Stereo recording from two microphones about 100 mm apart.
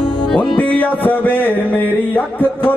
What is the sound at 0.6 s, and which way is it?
Music, 15° left (ahead or behind).